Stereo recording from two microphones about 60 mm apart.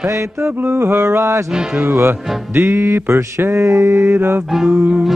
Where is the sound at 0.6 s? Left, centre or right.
Right.